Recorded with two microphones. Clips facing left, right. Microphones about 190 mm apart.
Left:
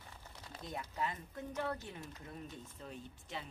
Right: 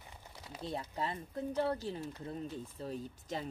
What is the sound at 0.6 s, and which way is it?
Speech, 30° right (ahead or behind).